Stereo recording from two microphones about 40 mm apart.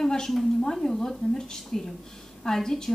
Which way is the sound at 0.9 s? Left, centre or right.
Centre.